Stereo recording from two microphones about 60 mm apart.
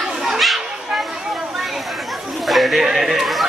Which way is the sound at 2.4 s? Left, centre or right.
Centre.